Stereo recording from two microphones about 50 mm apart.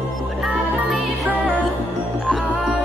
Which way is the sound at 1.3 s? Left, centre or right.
Right.